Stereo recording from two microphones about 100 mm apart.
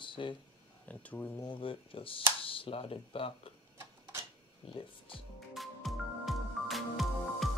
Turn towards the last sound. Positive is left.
turn(degrees=0)  # may be behind; listen again after turning